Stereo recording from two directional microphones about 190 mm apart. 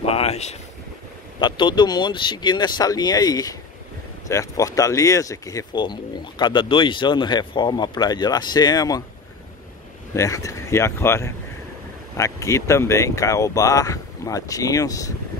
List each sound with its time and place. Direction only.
0.0 s boat: 30° left (ahead or behind)
1.4 s speech: 25° left (ahead or behind)
10.1 s speech: 15° left (ahead or behind)